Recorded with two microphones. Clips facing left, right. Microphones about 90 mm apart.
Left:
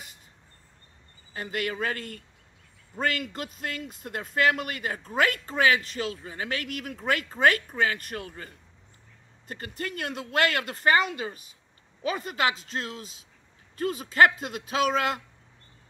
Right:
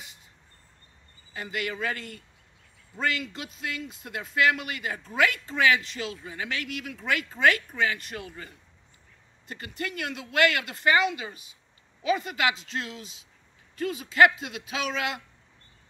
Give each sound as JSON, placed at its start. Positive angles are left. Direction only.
{"t": 1.3, "sound": "a man's voice", "side_deg": 45}